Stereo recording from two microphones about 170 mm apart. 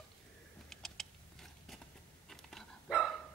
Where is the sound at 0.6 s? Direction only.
Centre (ahead or behind).